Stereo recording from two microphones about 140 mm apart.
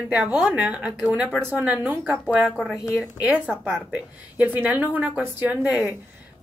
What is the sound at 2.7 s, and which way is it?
Speech, 20° left (ahead or behind).